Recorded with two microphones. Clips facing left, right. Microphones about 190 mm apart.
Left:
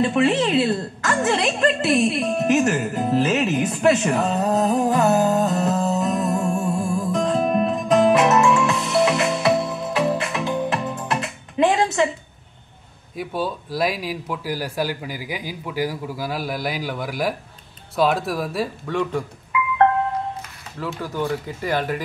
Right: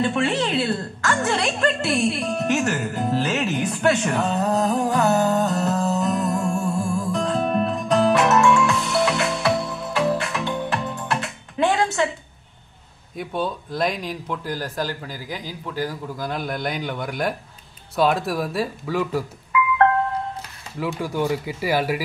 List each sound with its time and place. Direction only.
0.0 s a woman's voice: centre (ahead or behind)
6.6 s music: 15° left (ahead or behind)
7.0 s music: centre (ahead or behind)
13.1 s a woman's voice: 5° left (ahead or behind)
20.8 s speech: 10° right (ahead or behind)